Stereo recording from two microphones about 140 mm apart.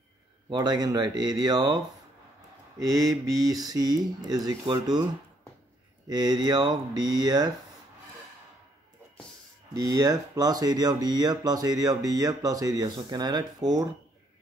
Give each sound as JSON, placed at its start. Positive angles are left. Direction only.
{"t": 0.5, "sound": "speech", "side_deg": -30}
{"t": 2.8, "sound": "speech", "side_deg": -25}
{"t": 6.0, "sound": "speech", "side_deg": -30}
{"t": 9.8, "sound": "speech", "side_deg": -25}